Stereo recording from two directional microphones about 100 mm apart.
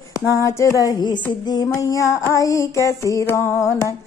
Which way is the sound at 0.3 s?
30° left (ahead or behind).